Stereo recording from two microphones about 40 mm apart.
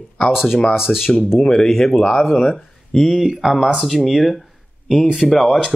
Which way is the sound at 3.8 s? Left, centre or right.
Centre.